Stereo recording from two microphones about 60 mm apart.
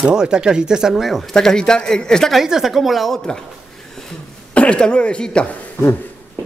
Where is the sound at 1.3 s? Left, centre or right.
Centre.